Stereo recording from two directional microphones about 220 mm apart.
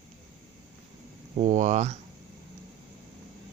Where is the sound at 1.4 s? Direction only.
35° right (ahead or behind).